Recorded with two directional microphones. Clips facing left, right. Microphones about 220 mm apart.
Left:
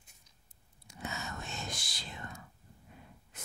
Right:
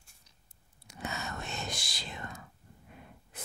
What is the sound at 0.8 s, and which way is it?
Whispering, 70° right (ahead or behind).